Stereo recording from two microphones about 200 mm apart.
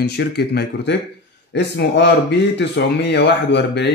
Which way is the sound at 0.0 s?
55° left (ahead or behind).